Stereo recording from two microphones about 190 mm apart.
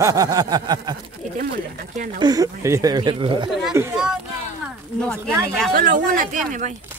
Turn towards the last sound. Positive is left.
turn(degrees=-45)  # may be behind; listen again after turning